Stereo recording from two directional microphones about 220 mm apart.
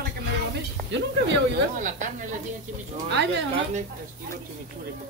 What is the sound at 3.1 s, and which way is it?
Speech, 50° right (ahead or behind).